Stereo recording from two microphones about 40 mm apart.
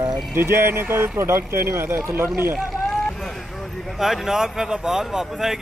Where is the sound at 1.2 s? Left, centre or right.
Right.